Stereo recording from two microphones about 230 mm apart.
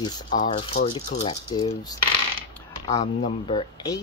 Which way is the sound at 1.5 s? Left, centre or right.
Centre.